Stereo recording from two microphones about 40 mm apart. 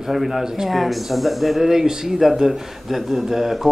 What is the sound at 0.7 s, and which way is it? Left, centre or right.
Speech, centre.